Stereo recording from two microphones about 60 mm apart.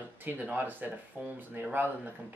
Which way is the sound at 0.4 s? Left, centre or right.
Right.